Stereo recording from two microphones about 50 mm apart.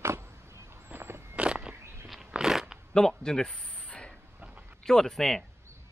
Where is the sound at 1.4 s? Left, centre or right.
Centre.